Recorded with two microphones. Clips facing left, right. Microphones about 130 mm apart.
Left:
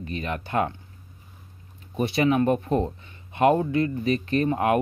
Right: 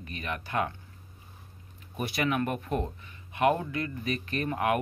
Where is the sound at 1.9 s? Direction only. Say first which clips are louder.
Left 7 dB; 25° left (ahead or behind).